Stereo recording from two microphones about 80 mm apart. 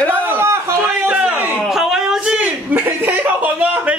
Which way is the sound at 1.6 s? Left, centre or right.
Centre.